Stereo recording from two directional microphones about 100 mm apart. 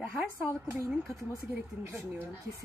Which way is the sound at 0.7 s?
25° right (ahead or behind).